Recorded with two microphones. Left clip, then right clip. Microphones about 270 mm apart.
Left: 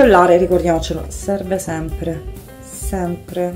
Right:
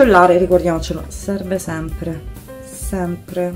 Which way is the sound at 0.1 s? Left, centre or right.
Centre.